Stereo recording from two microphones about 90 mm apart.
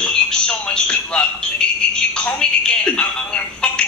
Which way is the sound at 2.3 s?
10° left (ahead or behind).